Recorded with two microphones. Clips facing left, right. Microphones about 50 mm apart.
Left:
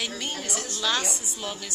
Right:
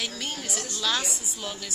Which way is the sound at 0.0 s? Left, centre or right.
Centre.